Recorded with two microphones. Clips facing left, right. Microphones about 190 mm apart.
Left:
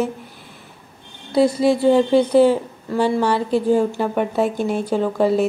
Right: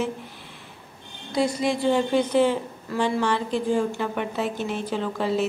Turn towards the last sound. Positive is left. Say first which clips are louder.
# left 7 dB
turn(degrees=45)  # may be behind; listen again after turning